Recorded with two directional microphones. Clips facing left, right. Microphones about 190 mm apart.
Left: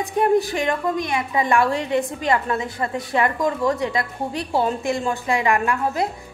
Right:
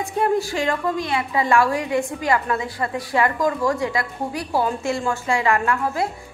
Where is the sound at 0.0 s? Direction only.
20° left (ahead or behind).